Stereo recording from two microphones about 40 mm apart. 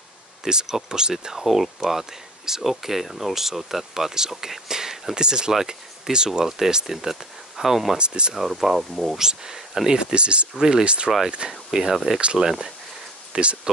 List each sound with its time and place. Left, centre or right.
0.7 s speech: centre
8.0 s speech: right
8.4 s speech: centre
9.9 s speech: right
11.7 s speech: centre
13.3 s speech: right